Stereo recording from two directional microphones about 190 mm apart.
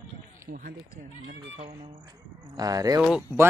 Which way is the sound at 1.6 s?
30° right (ahead or behind).